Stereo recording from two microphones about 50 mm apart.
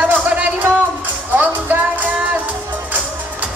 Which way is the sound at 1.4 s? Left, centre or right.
Right.